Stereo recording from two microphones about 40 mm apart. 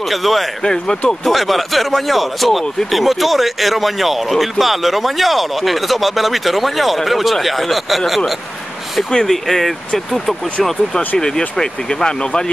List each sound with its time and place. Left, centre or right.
0.1 s speech: centre
9.1 s speech: centre